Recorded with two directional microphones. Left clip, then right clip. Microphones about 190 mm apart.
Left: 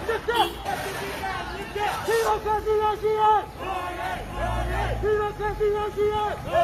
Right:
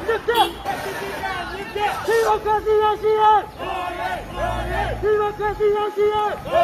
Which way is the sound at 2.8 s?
15° left (ahead or behind).